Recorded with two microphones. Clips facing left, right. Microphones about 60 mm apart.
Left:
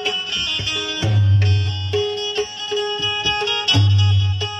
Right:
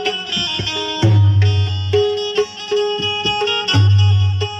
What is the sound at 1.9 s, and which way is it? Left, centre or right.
Music, right.